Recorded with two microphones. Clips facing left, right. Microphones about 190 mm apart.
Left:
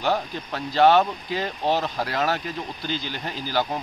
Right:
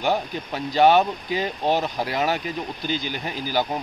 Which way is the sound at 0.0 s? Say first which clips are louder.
Right 1 dB; 15° right (ahead or behind).